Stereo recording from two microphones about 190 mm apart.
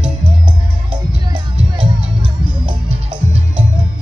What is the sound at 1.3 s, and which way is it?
Music, 25° right (ahead or behind).